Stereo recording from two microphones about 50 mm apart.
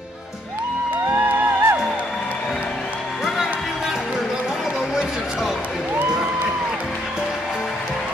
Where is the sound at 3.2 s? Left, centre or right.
Centre.